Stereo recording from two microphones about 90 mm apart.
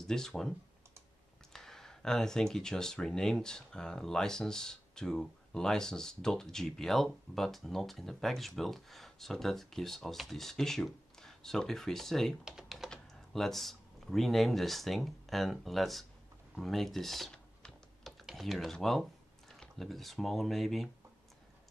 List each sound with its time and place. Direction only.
0.0 s speech: 5° left (ahead or behind)
12.4 s typing: 5° right (ahead or behind)
12.9 s speech: 5° left (ahead or behind)
16.5 s typing: centre (ahead or behind)
18.2 s speech: centre (ahead or behind)